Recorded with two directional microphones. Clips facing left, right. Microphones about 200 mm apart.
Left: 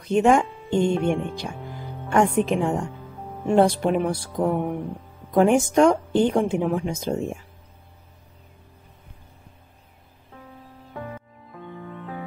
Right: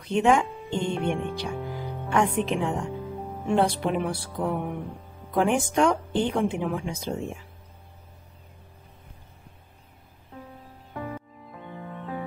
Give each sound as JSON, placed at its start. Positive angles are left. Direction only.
{"t": 0.0, "sound": "speech", "side_deg": 45}